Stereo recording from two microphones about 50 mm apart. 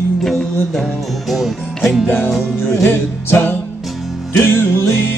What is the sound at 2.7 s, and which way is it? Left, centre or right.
Music, left.